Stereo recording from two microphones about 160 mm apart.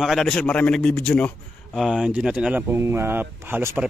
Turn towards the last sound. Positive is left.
turn(degrees=-15)  # may be behind; listen again after turning